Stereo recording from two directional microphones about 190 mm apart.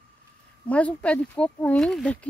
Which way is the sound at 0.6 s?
5° left (ahead or behind).